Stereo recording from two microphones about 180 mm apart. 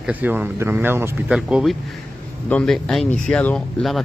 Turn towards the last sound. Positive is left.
turn(degrees=5)  # may be behind; listen again after turning